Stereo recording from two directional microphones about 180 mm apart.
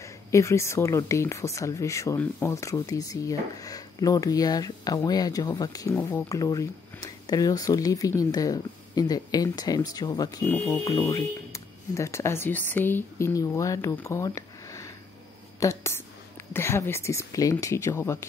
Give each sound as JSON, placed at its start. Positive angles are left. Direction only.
{"t": 0.0, "sound": "speech", "side_deg": 15}